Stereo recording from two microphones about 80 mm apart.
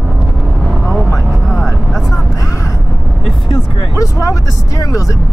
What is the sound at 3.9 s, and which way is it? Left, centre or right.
Speech, left.